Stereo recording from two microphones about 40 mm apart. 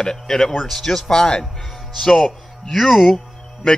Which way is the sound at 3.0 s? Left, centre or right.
Left.